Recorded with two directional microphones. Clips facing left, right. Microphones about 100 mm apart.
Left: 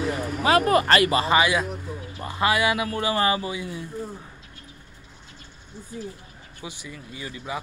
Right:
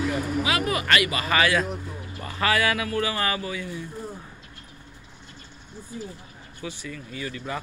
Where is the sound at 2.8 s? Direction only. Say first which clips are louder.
Left 3 dB; 25° left (ahead or behind).